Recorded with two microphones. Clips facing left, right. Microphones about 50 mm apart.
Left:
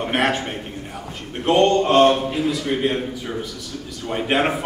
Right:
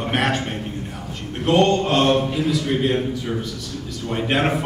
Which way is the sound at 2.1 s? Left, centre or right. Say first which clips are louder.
Right 2 dB; centre.